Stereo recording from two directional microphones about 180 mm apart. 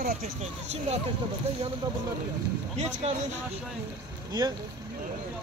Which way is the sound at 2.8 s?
40° right (ahead or behind).